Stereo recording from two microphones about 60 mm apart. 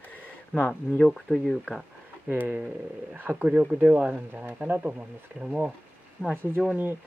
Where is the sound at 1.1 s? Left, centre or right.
Centre.